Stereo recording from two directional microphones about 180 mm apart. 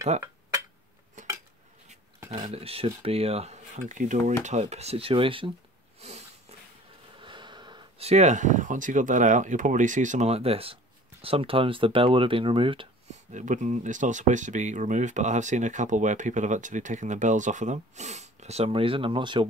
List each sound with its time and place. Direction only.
1.2 s cutlery: 45° right (ahead or behind)
2.4 s speech: 35° right (ahead or behind)
5.9 s a sound: 35° right (ahead or behind)
7.2 s a sound: 25° right (ahead or behind)
8.1 s speech: 40° right (ahead or behind)
13.3 s speech: 45° right (ahead or behind); by 19.4 s 25° right (ahead or behind)